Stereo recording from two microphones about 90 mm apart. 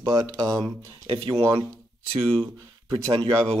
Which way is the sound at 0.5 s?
5° left (ahead or behind).